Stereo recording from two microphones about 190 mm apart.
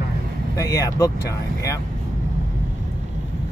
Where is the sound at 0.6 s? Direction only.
20° left (ahead or behind).